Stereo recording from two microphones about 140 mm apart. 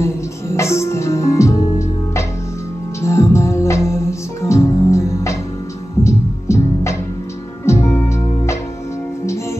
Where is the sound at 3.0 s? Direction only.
20° left (ahead or behind).